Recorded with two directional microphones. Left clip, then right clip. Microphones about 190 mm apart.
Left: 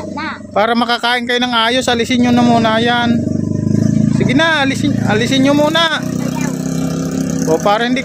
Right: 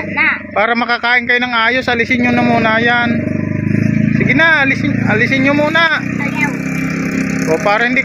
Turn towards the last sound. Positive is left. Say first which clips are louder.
# right 1 dB
turn(degrees=25)  # may be behind; listen again after turning